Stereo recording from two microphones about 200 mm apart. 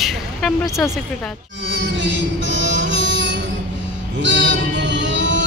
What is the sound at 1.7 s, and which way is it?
Music, 65° right (ahead or behind).